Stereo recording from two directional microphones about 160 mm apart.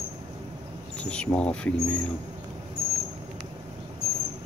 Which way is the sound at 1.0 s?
5° left (ahead or behind).